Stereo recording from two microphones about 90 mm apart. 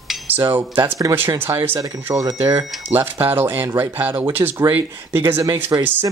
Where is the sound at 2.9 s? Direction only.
25° right (ahead or behind).